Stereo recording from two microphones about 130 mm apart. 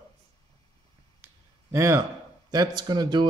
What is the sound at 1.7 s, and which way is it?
A man's voice, 20° right (ahead or behind).